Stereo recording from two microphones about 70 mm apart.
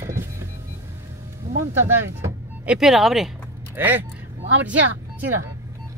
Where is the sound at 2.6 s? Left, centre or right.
Centre.